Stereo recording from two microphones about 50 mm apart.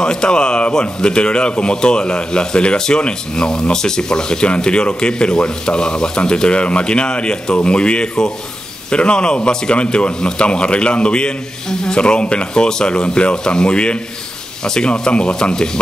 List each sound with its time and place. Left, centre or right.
0.0 s speech: centre